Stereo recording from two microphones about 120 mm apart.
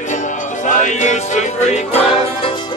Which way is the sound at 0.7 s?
90° left.